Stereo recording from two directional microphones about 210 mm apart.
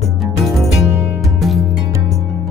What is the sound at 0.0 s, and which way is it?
Music, centre (ahead or behind).